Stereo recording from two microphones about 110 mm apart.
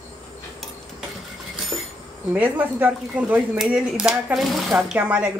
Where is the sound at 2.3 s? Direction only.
15° right (ahead or behind).